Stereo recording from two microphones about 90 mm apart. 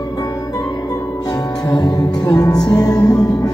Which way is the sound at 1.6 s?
50° left (ahead or behind).